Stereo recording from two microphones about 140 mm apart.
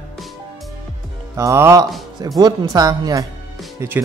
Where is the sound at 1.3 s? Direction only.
20° right (ahead or behind).